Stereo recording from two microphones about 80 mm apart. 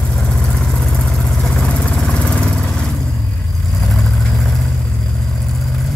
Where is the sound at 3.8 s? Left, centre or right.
Centre.